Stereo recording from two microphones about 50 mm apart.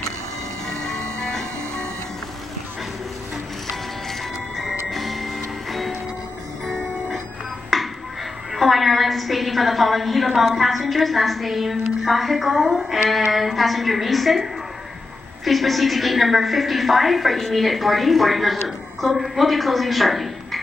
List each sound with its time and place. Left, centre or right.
0.7 s train: left
4.9 s music: centre
7.7 s music: centre
8.5 s a woman's voice: centre